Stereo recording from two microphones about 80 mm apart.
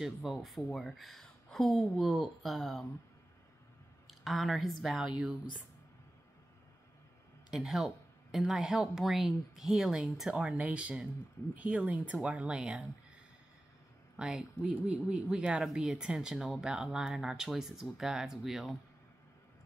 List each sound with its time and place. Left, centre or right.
0.0 s speech: centre
4.1 s a woman's voice: centre
7.5 s speech: centre
14.1 s speech: centre